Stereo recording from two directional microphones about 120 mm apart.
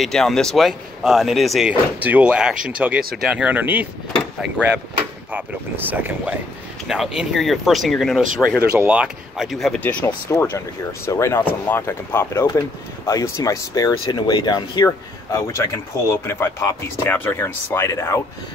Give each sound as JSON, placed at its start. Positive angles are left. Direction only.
{"t": 0.0, "sound": "speech", "side_deg": 5}
{"t": 5.3, "sound": "speech", "side_deg": -15}
{"t": 6.9, "sound": "speech", "side_deg": -5}
{"t": 8.5, "sound": "speech", "side_deg": -10}
{"t": 14.9, "sound": "speech", "side_deg": 25}